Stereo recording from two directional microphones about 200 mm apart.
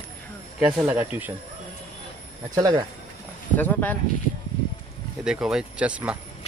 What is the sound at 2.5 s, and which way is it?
Speech, 20° right (ahead or behind).